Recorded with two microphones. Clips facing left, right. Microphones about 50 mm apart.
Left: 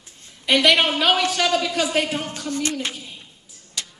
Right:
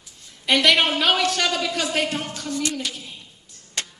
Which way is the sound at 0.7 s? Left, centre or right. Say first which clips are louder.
Even; centre.